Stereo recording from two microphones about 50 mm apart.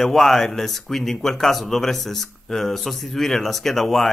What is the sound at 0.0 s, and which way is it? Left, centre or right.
Speech, centre.